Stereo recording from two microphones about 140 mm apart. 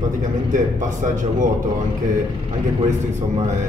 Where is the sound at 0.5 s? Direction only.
65° right (ahead or behind).